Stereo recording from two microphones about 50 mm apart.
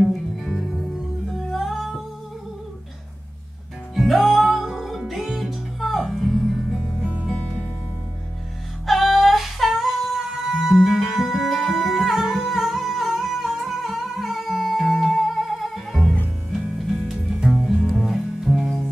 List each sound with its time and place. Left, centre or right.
0.1 s music: centre
0.6 s music: centre
3.9 s music: centre
7.3 s music: centre
8.8 s music: centre